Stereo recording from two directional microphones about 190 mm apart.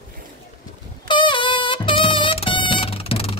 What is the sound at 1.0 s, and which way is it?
Music, 25° left (ahead or behind).